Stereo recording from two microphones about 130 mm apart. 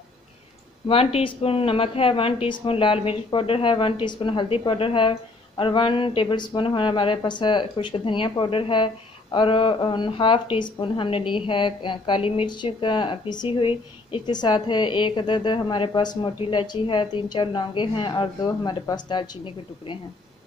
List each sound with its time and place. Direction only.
0.8 s a woman's voice: 45° left (ahead or behind)